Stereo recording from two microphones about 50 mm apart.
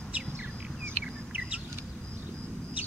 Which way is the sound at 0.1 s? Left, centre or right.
Right.